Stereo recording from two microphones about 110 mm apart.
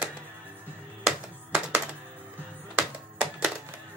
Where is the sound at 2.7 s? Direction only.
10° right (ahead or behind).